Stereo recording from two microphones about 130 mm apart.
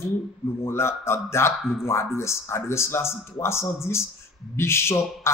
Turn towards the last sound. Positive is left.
turn(degrees=20)  # may be behind; listen again after turning